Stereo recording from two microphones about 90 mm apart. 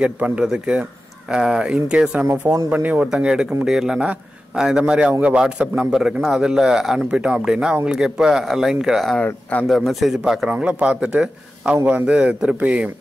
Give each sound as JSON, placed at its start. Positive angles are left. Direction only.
{"t": 0.0, "sound": "a man's voice", "side_deg": -10}
{"t": 3.1, "sound": "a man's voice", "side_deg": -5}
{"t": 9.2, "sound": "speech", "side_deg": 15}
{"t": 9.7, "sound": "speech", "side_deg": 0}
{"t": 10.5, "sound": "a man's voice", "side_deg": -15}